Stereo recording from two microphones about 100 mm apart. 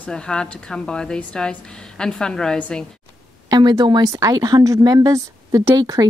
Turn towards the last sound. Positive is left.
turn(degrees=-35)  # may be behind; listen again after turning